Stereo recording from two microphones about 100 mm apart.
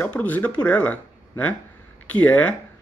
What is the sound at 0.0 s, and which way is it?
Speech, 15° left (ahead or behind).